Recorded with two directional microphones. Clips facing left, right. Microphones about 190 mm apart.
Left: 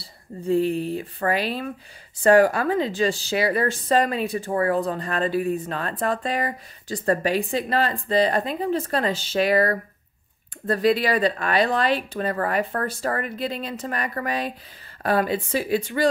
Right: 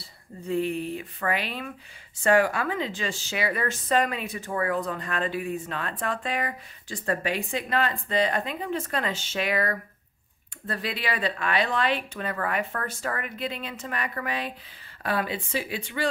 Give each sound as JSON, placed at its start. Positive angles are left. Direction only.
{"t": 0.0, "sound": "speech", "side_deg": 35}